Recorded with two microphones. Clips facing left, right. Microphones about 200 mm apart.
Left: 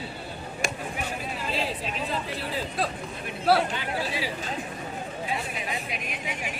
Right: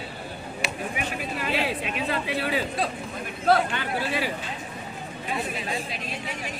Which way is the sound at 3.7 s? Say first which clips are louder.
Right 2 dB; 60° right (ahead or behind).